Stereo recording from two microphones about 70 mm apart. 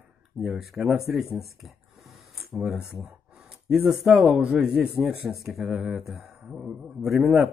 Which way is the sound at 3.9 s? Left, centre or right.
Centre.